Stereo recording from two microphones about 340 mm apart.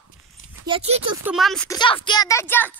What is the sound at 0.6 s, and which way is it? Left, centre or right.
Speech, centre.